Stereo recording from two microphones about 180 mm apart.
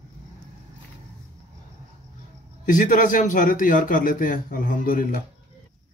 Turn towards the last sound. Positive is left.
turn(degrees=50)  # may be behind; listen again after turning